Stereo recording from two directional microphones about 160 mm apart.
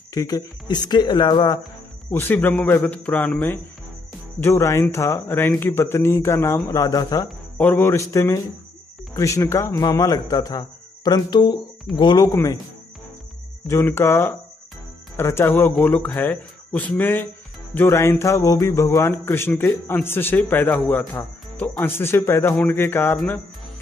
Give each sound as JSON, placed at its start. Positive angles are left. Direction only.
{"t": 0.1, "sound": "a man's voice", "side_deg": 25}
{"t": 2.0, "sound": "a man's voice", "side_deg": 15}
{"t": 7.2, "sound": "a man's voice", "side_deg": 10}
{"t": 13.7, "sound": "a man's voice", "side_deg": 15}